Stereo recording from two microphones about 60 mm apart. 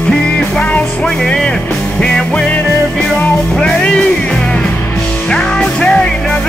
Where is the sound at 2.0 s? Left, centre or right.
Left.